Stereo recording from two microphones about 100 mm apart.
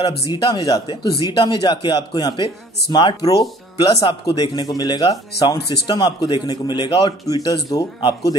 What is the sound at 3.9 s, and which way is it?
A man's voice, 45° left (ahead or behind).